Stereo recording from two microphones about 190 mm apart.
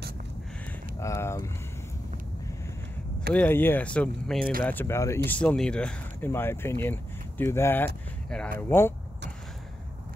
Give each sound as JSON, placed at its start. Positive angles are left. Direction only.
{"t": 0.9, "sound": "speech", "side_deg": 15}
{"t": 3.3, "sound": "speech", "side_deg": 10}
{"t": 4.4, "sound": "speech", "side_deg": -50}
{"t": 4.6, "sound": "speech", "side_deg": 10}